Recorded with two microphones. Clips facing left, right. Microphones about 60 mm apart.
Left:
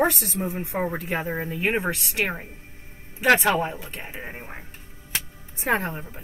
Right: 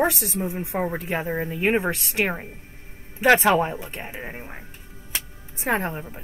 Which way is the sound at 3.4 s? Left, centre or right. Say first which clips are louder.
Right 3 dB; centre.